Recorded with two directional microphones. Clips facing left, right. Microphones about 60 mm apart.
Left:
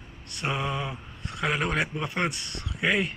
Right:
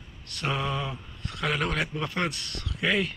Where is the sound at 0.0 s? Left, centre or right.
Centre.